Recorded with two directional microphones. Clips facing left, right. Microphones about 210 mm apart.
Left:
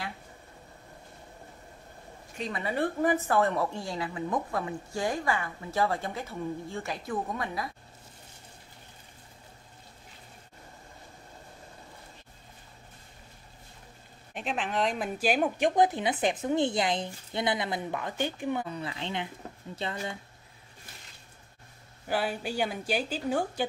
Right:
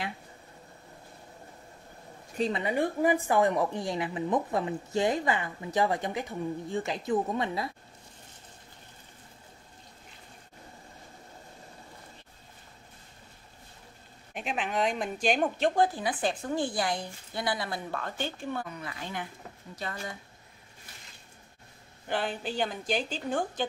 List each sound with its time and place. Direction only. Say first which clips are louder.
2.3 s speech: right 6 dB; 30° right (ahead or behind)
2.6 s a woman's voice: left 1 dB; 15° right (ahead or behind)
14.3 s a woman's voice: even; centre (ahead or behind); by 18.7 s 15° left (ahead or behind)
18.7 s speech: left 4 dB; 30° left (ahead or behind)
22.0 s a woman's voice: left 1 dB; 5° left (ahead or behind)